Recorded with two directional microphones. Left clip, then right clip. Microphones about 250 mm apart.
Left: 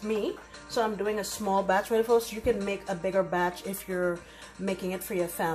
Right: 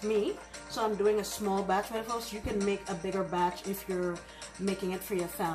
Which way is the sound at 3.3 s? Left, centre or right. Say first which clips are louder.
Left 2 dB; left.